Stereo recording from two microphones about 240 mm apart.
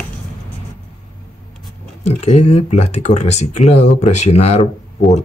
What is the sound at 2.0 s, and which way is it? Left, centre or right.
Speech, left.